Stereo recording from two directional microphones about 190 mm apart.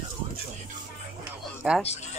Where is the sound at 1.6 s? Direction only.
5° right (ahead or behind).